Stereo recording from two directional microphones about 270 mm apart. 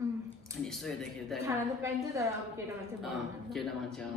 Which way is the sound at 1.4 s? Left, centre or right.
Centre.